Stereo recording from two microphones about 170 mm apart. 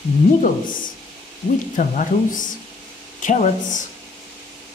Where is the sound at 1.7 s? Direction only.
50° left (ahead or behind).